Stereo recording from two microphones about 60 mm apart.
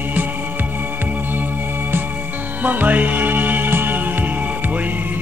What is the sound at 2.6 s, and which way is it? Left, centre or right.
Music, right.